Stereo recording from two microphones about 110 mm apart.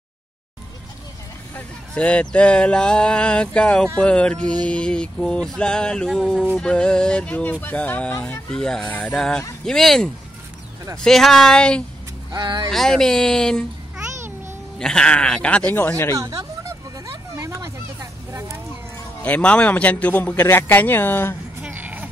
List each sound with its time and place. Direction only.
1.5 s speech: 10° left (ahead or behind)
12.3 s speech: 40° right (ahead or behind)
12.7 s speech: 5° left (ahead or behind)
14.8 s speech: 5° left (ahead or behind)
16.2 s a sound: 30° right (ahead or behind)
19.2 s speech: 10° left (ahead or behind)
21.6 s a sound: 15° right (ahead or behind)